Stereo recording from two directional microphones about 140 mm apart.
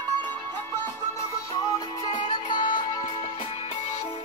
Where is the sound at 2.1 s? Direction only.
35° left (ahead or behind).